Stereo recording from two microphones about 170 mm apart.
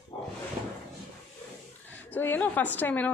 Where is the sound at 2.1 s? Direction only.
10° left (ahead or behind).